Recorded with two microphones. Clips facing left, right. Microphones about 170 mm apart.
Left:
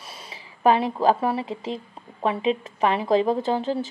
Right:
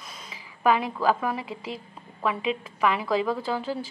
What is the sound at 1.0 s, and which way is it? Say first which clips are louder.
A woman's voice: left 4 dB; 35° left (ahead or behind).